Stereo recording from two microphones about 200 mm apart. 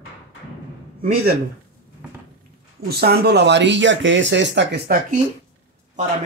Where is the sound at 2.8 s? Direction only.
50° right (ahead or behind).